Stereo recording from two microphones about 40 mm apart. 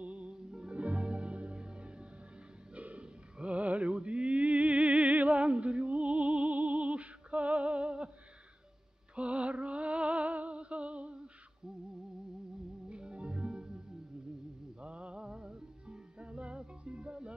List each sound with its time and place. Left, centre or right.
0.0 s music: right
9.1 s music: right
12.9 s music: right